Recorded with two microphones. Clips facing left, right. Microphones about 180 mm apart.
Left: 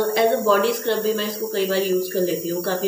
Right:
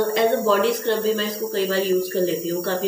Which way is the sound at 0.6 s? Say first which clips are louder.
Even; 20° right (ahead or behind).